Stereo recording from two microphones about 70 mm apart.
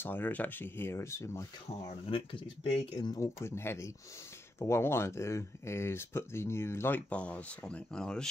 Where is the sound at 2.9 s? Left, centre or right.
Left.